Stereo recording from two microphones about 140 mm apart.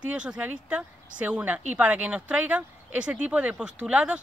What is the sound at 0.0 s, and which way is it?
Speech, 5° right (ahead or behind).